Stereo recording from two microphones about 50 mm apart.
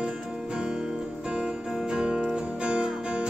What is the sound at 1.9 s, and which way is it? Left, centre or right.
Music, centre.